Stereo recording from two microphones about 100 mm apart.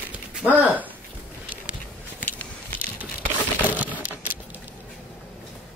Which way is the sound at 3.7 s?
15° right (ahead or behind).